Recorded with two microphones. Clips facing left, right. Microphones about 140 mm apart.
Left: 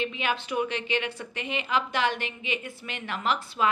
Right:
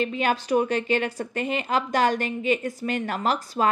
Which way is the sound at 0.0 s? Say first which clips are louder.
Right 5 dB; 40° right (ahead or behind).